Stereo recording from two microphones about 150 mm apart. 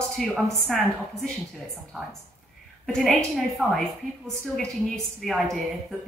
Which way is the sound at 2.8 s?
Centre (ahead or behind).